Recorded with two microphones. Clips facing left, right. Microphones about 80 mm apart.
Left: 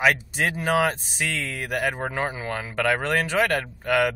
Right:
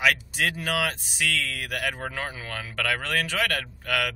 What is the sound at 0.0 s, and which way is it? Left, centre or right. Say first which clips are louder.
Speech: left 3 dB; left.